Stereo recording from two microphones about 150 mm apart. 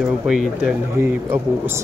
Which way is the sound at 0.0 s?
5° right (ahead or behind).